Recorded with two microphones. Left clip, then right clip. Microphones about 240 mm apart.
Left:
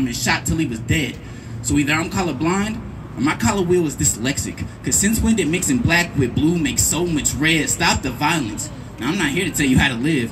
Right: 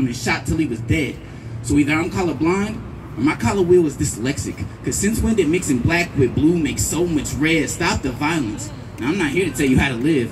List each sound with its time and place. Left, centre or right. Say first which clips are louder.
0.2 s speech: left 2 dB; left